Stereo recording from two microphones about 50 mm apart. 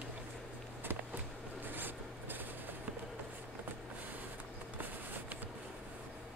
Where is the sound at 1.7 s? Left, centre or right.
Right.